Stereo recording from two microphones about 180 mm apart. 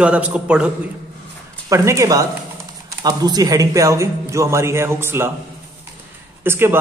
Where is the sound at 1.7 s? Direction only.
15° right (ahead or behind).